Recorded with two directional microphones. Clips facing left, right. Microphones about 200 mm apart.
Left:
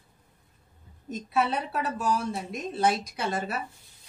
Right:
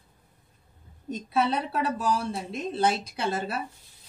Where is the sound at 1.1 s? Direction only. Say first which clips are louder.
Right 1 dB; 30° right (ahead or behind).